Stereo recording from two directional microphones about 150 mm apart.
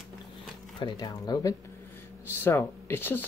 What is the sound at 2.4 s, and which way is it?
Speech, 15° left (ahead or behind).